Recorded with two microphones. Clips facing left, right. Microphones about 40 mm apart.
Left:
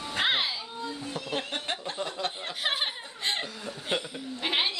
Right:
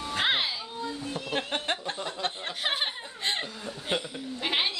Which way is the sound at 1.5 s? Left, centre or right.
Right.